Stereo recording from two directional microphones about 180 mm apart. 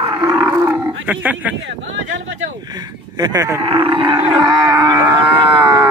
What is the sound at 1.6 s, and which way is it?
Speech, 90° right.